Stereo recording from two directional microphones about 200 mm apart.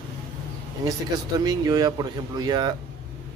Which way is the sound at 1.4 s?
20° right (ahead or behind).